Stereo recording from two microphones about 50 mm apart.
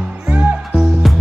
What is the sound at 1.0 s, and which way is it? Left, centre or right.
Music, centre.